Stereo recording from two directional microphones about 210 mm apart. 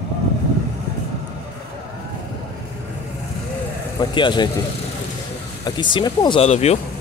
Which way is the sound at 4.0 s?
20° left (ahead or behind).